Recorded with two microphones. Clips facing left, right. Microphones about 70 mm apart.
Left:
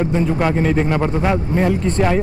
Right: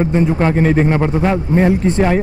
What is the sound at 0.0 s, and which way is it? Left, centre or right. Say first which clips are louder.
Speech: right 3 dB; right.